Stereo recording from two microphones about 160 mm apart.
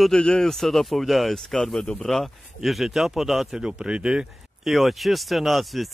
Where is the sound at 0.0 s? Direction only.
5° left (ahead or behind).